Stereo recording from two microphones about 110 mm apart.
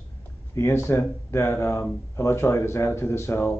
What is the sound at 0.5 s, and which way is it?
Speech, 25° left (ahead or behind).